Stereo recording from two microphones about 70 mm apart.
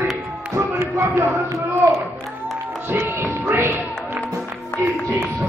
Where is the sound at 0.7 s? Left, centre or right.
Right.